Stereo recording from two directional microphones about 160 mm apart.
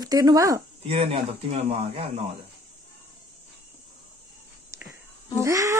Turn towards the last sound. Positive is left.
turn(degrees=-20)  # may be behind; listen again after turning